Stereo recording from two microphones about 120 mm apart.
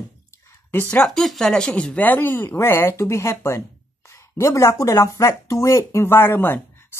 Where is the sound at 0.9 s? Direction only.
5° left (ahead or behind).